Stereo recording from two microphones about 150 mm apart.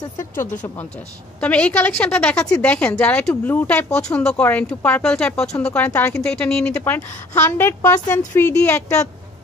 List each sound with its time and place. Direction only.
0.4 s a woman's voice: 15° left (ahead or behind)